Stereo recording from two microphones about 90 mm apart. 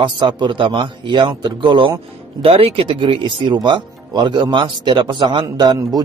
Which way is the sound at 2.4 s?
90° right.